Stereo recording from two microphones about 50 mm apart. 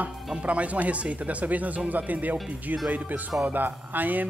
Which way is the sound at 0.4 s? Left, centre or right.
Right.